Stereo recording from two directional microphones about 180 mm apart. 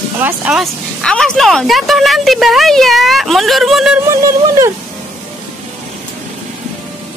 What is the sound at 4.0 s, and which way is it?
Speech, 15° right (ahead or behind).